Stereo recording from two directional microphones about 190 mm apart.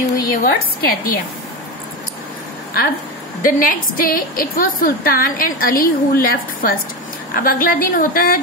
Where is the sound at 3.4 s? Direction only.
45° left (ahead or behind).